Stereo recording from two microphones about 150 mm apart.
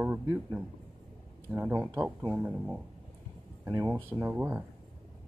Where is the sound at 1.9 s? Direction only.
25° right (ahead or behind).